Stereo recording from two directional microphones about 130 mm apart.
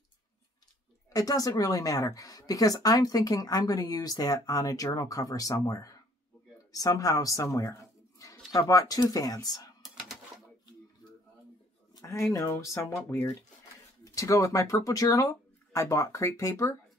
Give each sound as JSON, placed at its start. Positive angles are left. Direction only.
{"t": 1.1, "sound": "a woman's voice", "side_deg": 25}
{"t": 9.8, "sound": "bird", "side_deg": 0}
{"t": 12.0, "sound": "a woman's voice", "side_deg": 20}